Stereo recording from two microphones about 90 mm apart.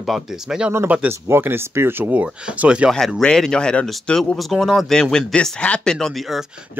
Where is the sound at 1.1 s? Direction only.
25° right (ahead or behind).